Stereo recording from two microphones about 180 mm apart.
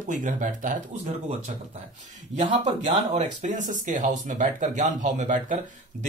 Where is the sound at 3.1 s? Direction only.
40° right (ahead or behind).